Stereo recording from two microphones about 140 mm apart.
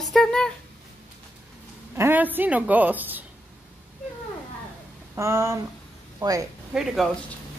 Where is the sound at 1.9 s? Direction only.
15° right (ahead or behind).